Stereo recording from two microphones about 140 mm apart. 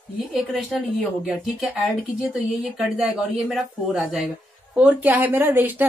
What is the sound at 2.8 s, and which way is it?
Speech, centre (ahead or behind).